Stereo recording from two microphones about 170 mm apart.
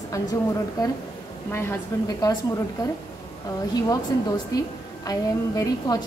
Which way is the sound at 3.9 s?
20° left (ahead or behind).